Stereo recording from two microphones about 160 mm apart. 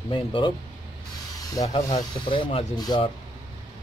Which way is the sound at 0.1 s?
35° left (ahead or behind).